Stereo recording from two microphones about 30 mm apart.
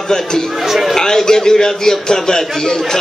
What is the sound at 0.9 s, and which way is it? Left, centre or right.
A man's voice, centre.